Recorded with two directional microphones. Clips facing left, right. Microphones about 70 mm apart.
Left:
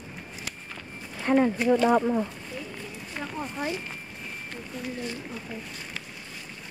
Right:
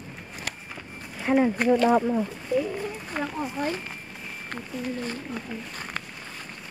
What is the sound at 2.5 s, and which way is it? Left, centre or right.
Run, right.